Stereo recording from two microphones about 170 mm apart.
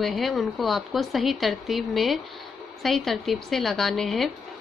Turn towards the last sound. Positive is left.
turn(degrees=0)  # may be behind; listen again after turning